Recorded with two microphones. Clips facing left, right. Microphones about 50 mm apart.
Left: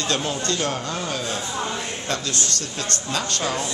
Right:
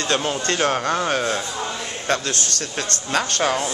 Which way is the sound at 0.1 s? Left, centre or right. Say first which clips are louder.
Right 4 dB; right.